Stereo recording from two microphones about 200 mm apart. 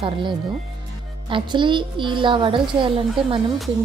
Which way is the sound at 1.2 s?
25° right (ahead or behind).